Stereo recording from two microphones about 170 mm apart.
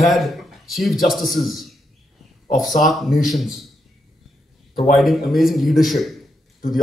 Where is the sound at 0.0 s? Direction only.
Centre (ahead or behind).